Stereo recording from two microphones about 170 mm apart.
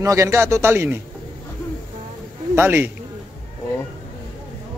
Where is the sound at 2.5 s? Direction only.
15° right (ahead or behind).